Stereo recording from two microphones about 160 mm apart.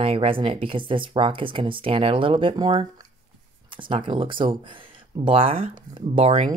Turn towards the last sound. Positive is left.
turn(degrees=-35)  # may be behind; listen again after turning